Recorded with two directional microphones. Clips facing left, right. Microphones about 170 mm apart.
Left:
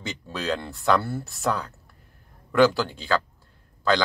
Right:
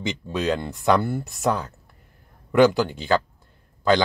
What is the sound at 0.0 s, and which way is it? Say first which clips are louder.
Speech: right 6 dB; 20° right (ahead or behind).